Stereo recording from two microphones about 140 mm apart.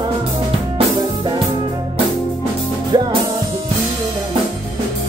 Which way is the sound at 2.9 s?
35° right (ahead or behind).